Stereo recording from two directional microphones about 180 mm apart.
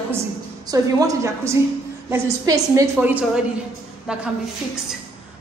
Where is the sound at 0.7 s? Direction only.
20° right (ahead or behind); by 4.2 s 5° right (ahead or behind).